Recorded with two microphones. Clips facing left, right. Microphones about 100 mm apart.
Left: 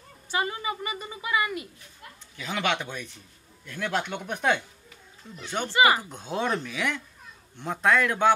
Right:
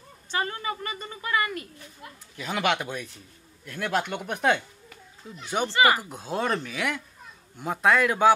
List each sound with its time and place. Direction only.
0.3 s a woman's voice: 15° left (ahead or behind)
2.3 s speech: 5° right (ahead or behind)
5.7 s a woman's voice: 15° left (ahead or behind)
5.9 s speech: 5° right (ahead or behind)